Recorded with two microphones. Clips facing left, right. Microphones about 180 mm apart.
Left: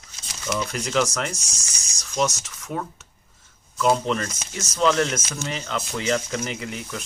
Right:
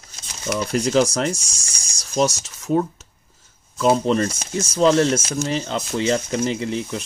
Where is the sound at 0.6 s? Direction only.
35° right (ahead or behind).